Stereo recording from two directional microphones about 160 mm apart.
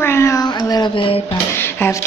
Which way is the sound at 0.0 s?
15° left (ahead or behind).